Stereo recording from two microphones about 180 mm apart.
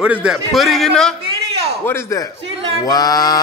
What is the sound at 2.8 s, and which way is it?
Mantra, 20° left (ahead or behind).